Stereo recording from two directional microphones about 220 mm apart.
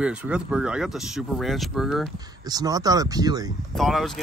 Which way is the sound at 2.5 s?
15° right (ahead or behind).